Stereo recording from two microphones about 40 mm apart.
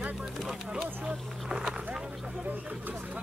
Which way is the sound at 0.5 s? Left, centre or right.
Centre.